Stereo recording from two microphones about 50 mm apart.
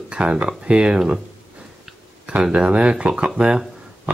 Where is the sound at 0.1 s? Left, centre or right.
Right.